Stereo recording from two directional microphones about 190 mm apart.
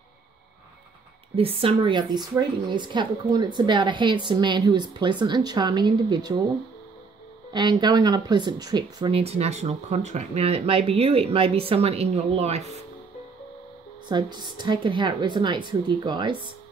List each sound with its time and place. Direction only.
1.3 s speech: 30° right (ahead or behind)
7.5 s speech: 25° right (ahead or behind)
14.0 s speech: 25° right (ahead or behind)